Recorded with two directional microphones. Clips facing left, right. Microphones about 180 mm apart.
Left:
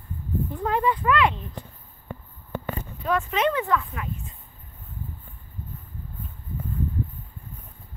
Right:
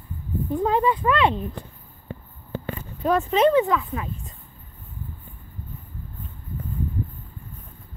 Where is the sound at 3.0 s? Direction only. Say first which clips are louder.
Right 5 dB; 35° right (ahead or behind).